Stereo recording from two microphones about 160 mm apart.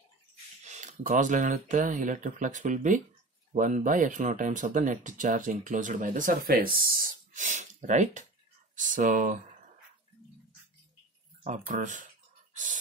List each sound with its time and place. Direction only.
0.7 s speech: 50° right (ahead or behind)
11.4 s speech: 50° right (ahead or behind)